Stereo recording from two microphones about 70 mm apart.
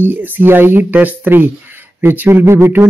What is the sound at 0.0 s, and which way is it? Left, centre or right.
A man's voice, right.